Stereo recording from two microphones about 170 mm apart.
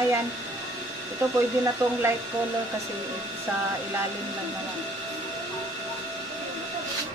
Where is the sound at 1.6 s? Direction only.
15° right (ahead or behind).